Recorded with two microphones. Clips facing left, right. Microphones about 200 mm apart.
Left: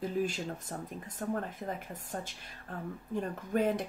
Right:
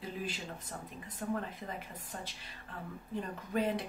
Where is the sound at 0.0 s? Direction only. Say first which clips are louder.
Left 8 dB; 45° left (ahead or behind).